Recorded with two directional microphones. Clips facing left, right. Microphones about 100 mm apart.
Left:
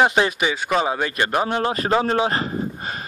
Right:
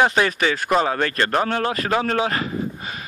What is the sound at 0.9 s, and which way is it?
Speech, 15° left (ahead or behind).